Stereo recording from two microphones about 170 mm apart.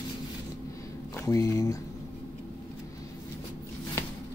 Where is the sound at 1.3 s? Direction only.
20° left (ahead or behind).